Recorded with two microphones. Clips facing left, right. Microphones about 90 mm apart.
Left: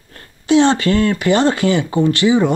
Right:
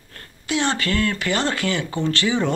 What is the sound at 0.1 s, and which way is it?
Speech, 25° left (ahead or behind).